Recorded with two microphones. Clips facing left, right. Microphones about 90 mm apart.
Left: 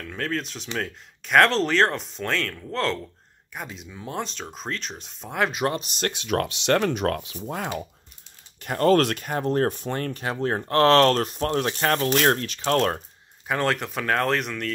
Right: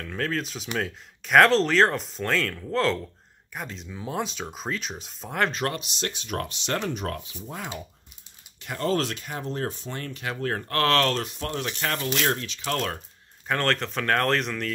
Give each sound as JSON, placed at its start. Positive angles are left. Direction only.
{"t": 0.0, "sound": "speech", "side_deg": 0}
{"t": 5.8, "sound": "speech", "side_deg": 50}
{"t": 10.2, "sound": "speech", "side_deg": 30}
{"t": 13.5, "sound": "speech", "side_deg": 10}